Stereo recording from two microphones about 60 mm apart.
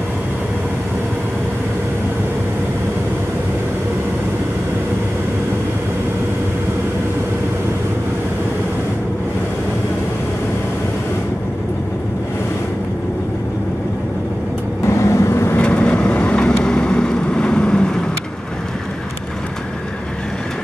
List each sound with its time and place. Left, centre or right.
14.9 s vehicle: left
15.6 s vehicle: left